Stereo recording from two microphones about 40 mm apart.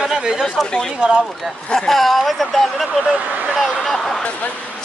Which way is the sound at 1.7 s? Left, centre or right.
Centre.